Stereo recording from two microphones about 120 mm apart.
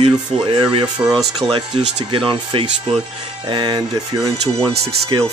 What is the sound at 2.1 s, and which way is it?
Speech, 45° right (ahead or behind).